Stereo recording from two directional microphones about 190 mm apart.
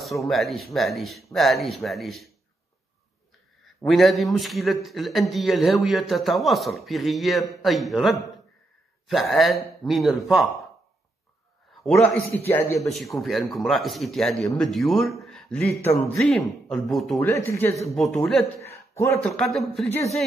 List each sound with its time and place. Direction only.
0.0 s a man's voice: centre (ahead or behind)
3.6 s a man's voice: centre (ahead or behind)
11.8 s a man's voice: centre (ahead or behind)
12.9 s a man's voice: centre (ahead or behind)
15.7 s a man's voice: 15° left (ahead or behind)
16.2 s a man's voice: centre (ahead or behind)
17.2 s a man's voice: 10° left (ahead or behind)
17.8 s a man's voice: centre (ahead or behind)